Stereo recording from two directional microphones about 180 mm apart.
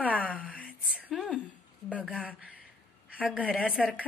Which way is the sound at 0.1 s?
10° left (ahead or behind).